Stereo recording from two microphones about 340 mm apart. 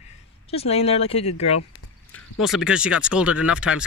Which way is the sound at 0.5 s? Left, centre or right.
Centre.